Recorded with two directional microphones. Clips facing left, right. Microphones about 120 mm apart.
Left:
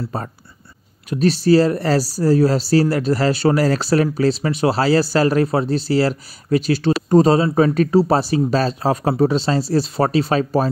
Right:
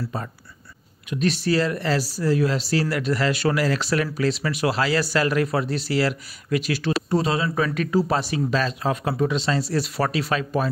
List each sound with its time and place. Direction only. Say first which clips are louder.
0.1 s speech: left 4 dB; 40° left (ahead or behind)